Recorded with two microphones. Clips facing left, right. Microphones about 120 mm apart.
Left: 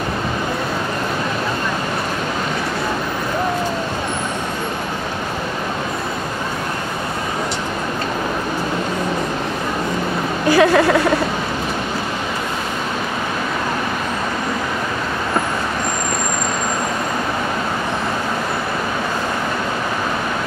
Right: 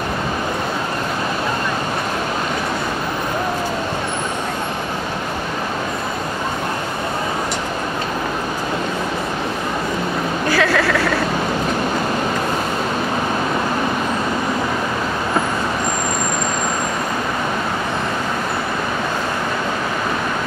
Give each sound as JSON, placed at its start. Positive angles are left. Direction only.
{"t": 10.5, "sound": "speech", "side_deg": 20}